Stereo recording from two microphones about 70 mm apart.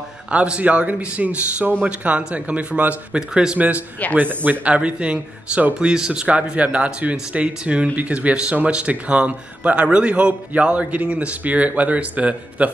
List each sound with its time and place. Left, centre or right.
0.3 s speech: centre